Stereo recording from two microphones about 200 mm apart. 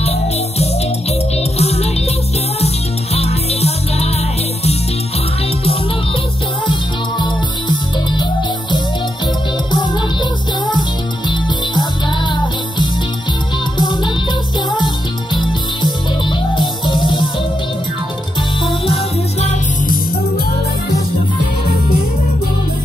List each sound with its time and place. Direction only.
1.6 s music: 30° left (ahead or behind)
3.2 s music: 30° left (ahead or behind)
6.7 s music: 20° left (ahead or behind)
9.7 s music: 20° left (ahead or behind)
13.7 s music: 20° left (ahead or behind)
15.3 s music: 25° left (ahead or behind)